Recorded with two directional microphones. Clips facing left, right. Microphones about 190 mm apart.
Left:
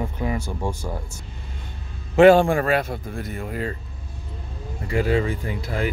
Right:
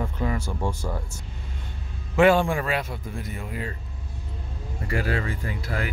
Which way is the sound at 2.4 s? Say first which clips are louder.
Left 6 dB; 50° left (ahead or behind).